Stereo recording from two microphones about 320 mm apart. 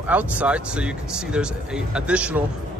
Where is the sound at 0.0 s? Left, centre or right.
Centre.